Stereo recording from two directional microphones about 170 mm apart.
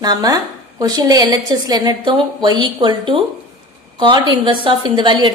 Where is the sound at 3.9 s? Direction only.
25° right (ahead or behind).